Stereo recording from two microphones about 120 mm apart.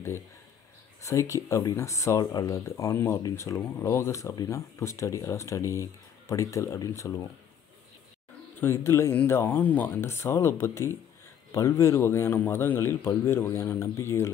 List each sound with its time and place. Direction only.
1.0 s speech: 25° left (ahead or behind)
8.5 s speech: 20° left (ahead or behind)